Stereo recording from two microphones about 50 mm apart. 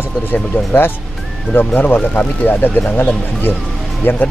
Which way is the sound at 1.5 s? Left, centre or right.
Left.